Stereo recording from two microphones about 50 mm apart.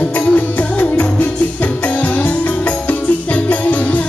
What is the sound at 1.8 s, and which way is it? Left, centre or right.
Music, left.